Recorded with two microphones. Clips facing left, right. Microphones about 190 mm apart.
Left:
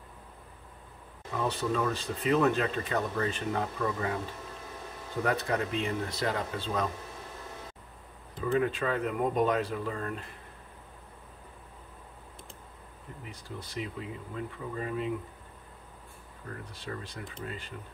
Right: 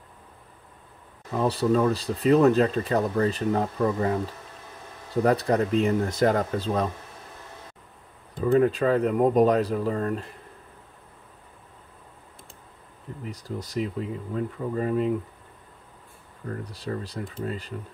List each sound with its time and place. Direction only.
1.3 s speech: 35° right (ahead or behind)
5.2 s speech: 35° right (ahead or behind)
8.5 s speech: 40° right (ahead or behind)
13.2 s speech: 40° right (ahead or behind)
16.4 s speech: 35° right (ahead or behind)